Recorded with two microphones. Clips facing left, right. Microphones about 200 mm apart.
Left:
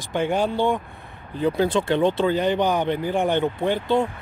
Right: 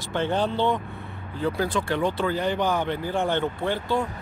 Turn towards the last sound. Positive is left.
turn(degrees=20)  # may be behind; listen again after turning